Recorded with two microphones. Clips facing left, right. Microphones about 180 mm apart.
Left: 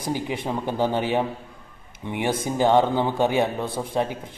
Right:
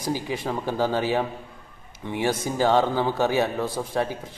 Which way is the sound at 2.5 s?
20° left (ahead or behind).